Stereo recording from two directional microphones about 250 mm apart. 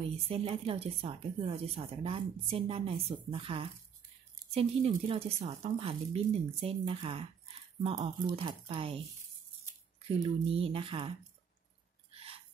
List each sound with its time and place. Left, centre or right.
0.3 s speech: right
10.5 s speech: right
12.1 s a sound: right